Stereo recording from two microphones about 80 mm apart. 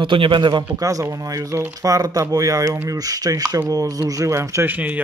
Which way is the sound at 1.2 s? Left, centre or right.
Right.